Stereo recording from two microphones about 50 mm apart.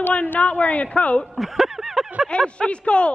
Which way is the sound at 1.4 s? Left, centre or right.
Centre.